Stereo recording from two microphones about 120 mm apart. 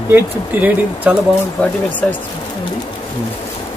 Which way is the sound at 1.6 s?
15° left (ahead or behind).